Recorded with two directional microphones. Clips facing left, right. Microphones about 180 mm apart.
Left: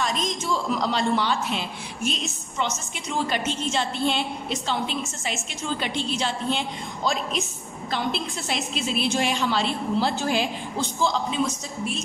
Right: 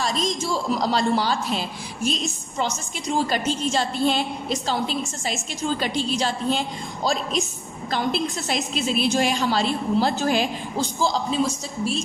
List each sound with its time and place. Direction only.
0.0 s a woman's voice: 35° right (ahead or behind)
7.9 s a woman's voice: 40° right (ahead or behind)